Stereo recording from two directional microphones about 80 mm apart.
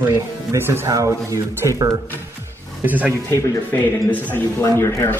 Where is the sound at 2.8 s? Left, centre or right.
Right.